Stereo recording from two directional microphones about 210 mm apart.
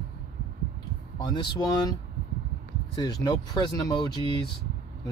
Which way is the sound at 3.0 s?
20° left (ahead or behind).